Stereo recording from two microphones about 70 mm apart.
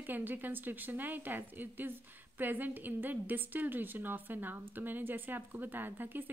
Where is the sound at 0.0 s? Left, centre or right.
Right.